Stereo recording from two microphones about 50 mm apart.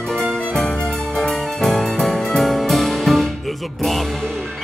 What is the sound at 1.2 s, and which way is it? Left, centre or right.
Music, centre.